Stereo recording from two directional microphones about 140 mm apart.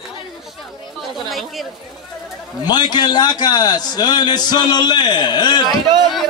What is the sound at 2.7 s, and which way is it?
A man's voice, 30° left (ahead or behind).